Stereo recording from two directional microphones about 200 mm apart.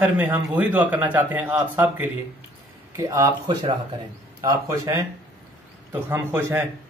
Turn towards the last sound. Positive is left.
turn(degrees=-10)  # may be behind; listen again after turning